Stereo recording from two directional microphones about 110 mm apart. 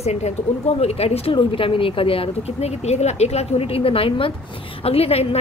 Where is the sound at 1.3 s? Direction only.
55° left (ahead or behind).